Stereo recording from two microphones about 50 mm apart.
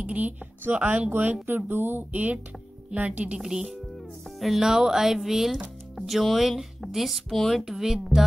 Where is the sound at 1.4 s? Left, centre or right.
Right.